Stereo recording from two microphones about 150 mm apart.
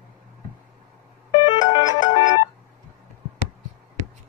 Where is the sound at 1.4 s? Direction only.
30° left (ahead or behind).